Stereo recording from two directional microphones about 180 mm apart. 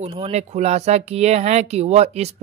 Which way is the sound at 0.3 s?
40° right (ahead or behind).